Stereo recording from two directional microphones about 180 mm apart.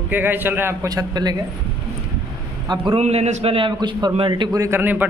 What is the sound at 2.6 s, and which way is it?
Speech, 25° right (ahead or behind).